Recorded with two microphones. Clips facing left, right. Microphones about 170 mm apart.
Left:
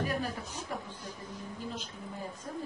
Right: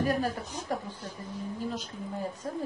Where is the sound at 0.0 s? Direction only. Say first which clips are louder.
Right 5 dB; 45° right (ahead or behind).